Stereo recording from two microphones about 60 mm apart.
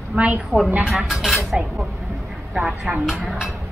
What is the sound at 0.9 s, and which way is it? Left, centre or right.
Speech, centre.